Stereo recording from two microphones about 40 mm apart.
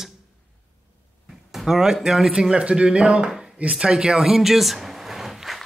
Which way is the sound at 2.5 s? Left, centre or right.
Right.